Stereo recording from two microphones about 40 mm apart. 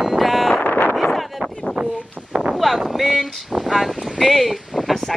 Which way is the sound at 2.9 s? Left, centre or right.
Centre.